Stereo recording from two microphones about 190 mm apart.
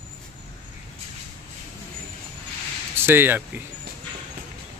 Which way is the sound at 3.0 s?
10° right (ahead or behind).